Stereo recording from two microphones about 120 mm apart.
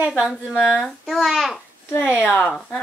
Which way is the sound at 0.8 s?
Centre (ahead or behind).